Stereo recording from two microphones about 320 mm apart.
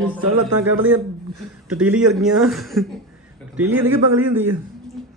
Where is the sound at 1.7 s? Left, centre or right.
Centre.